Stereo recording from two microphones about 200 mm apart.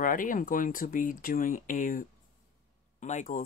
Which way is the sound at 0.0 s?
40° left (ahead or behind).